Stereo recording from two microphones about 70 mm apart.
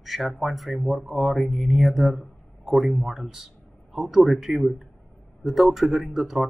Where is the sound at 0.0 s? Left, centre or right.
Centre.